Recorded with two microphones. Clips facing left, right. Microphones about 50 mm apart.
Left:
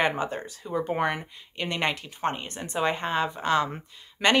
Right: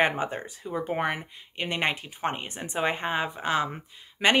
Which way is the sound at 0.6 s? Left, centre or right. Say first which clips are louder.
Left 2 dB; centre.